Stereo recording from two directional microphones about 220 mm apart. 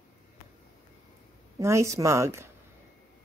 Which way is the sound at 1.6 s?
15° right (ahead or behind).